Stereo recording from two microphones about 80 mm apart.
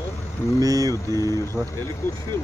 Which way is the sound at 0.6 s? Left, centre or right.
Right.